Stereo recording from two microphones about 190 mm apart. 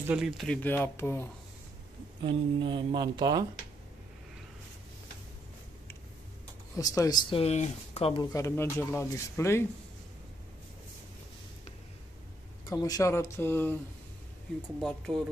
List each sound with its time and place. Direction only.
0.0 s speech: 5° right (ahead or behind); by 1.2 s 15° left (ahead or behind)
2.2 s mantra: 25° right (ahead or behind)
6.8 s speech: 20° left (ahead or behind)
12.8 s speech: 15° left (ahead or behind)
14.8 s speech: 5° left (ahead or behind)